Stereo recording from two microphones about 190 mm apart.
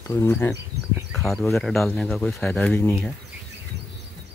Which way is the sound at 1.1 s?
Centre (ahead or behind).